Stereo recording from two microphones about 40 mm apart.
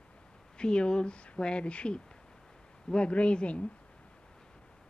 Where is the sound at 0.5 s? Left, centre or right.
Left.